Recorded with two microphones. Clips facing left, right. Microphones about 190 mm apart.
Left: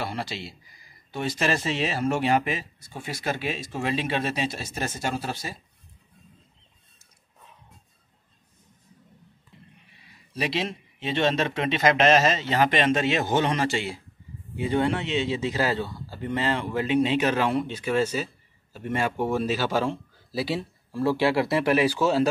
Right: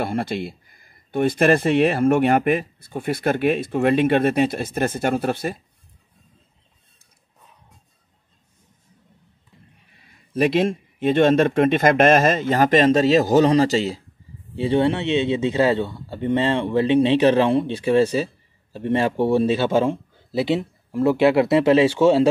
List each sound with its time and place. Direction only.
0.0 s speech: 55° right (ahead or behind)
10.3 s a man's voice: 50° right (ahead or behind); by 22.3 s 30° right (ahead or behind)